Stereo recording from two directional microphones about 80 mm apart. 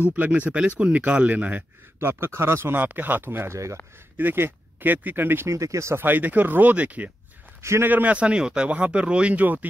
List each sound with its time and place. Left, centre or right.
0.0 s speech: centre
5.6 s speech: right; by 7.1 s centre
7.6 s a man's voice: right
7.9 s speech: centre